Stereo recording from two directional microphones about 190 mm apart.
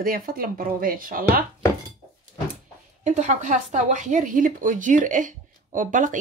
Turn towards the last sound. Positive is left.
turn(degrees=-45)  # may be behind; listen again after turning